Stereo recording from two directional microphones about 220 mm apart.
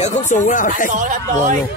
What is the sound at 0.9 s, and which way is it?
Speech, 35° right (ahead or behind).